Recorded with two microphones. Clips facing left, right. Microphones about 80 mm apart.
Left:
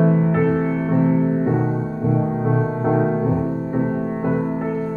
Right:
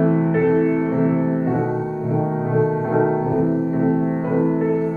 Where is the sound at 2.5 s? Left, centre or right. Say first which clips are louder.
Right 2 dB; centre.